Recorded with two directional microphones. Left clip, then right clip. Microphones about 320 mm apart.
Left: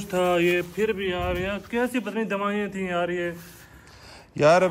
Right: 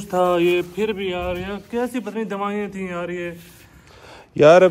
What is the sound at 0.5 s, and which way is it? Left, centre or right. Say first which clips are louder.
Speech: right 3 dB; centre.